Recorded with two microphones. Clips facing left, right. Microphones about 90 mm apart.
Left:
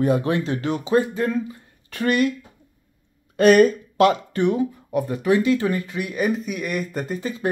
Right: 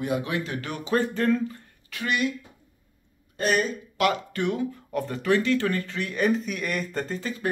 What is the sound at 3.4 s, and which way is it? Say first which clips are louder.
Speech: left 11 dB; 60° left (ahead or behind).